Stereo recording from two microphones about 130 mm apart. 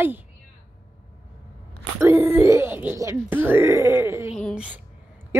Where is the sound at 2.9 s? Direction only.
20° right (ahead or behind).